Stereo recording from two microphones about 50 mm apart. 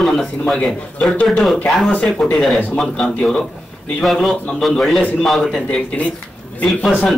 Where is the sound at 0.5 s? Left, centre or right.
Centre.